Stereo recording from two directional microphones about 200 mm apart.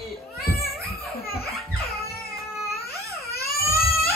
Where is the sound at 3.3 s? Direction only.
50° left (ahead or behind).